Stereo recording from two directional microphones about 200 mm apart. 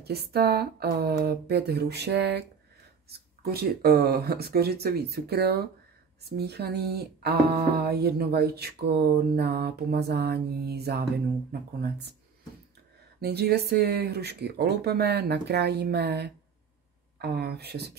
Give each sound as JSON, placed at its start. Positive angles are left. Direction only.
{"t": 0.0, "sound": "speech", "side_deg": -50}
{"t": 13.2, "sound": "speech", "side_deg": -55}